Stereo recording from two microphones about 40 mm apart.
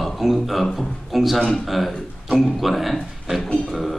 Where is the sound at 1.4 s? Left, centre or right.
Centre.